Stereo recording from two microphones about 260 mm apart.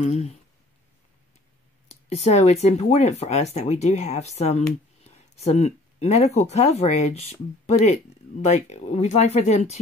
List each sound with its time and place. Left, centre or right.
0.0 s speech: left
1.9 s speech: left